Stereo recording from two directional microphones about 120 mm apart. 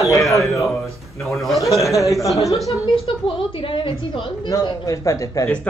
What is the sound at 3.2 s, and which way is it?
A woman's voice, 50° left (ahead or behind).